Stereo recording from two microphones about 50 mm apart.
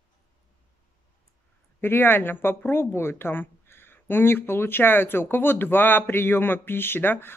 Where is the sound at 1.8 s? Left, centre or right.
Left.